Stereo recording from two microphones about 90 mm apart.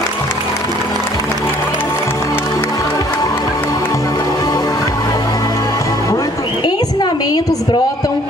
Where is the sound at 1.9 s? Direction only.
35° left (ahead or behind).